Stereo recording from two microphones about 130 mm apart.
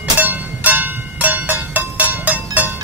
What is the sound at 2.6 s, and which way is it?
Music, 10° right (ahead or behind).